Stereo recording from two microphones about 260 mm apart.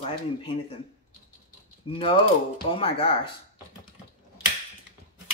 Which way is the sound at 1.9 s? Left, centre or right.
Left.